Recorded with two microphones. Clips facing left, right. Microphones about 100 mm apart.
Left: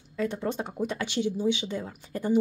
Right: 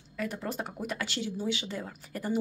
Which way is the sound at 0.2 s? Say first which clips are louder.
Left 5 dB; 25° left (ahead or behind).